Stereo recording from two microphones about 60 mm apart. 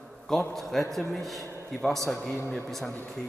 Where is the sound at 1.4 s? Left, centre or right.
Right.